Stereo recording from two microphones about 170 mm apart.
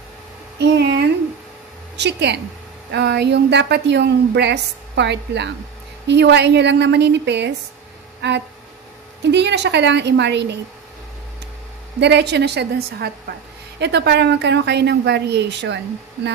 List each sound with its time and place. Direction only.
0.6 s a woman's voice: 80° right
12.0 s a woman's voice: 85° right